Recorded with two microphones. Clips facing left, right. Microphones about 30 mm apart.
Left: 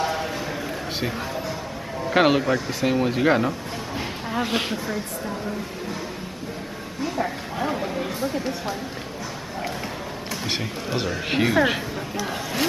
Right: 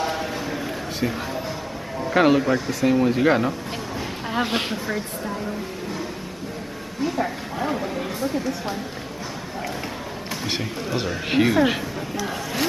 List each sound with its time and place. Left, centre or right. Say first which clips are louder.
0.0 s a sound: even; centre
2.1 s speech: right 1 dB; centre
3.3 s a man's voice: left 3 dB; centre
4.3 s speech: right 1 dB; centre
7.0 s a woman's voice: right 2 dB; centre
10.4 s a man's voice: right 1 dB; centre